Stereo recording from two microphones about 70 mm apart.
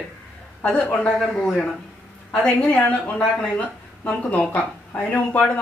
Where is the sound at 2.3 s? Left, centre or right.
Centre.